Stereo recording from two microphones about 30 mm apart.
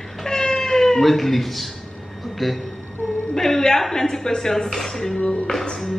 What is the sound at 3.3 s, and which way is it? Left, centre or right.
Speech, centre.